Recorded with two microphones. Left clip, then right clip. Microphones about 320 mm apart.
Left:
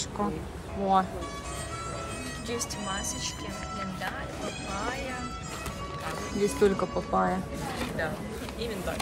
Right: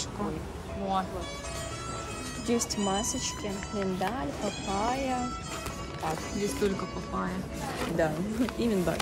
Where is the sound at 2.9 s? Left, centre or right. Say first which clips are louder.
Right 2 dB; right.